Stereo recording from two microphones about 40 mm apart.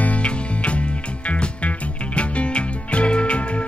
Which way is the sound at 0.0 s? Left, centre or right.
Left.